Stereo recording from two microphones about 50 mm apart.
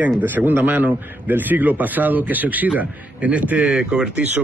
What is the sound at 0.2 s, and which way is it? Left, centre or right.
Speech, right.